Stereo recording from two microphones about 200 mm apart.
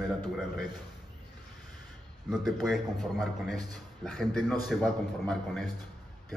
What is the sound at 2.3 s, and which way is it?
A man's voice, centre (ahead or behind).